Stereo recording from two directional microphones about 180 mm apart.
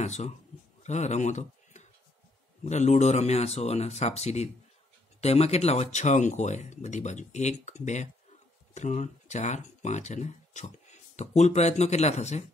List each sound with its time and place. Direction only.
0.0 s speech: 40° left (ahead or behind)